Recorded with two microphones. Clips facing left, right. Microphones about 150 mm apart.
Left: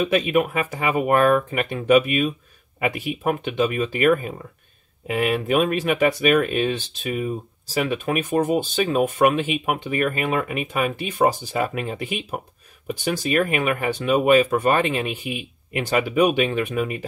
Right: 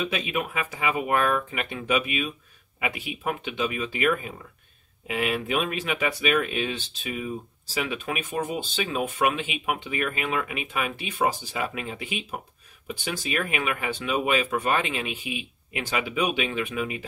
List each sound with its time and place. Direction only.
0.0 s speech: 50° left (ahead or behind)